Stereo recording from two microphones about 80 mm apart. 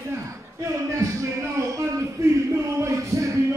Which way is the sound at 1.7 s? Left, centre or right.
Right.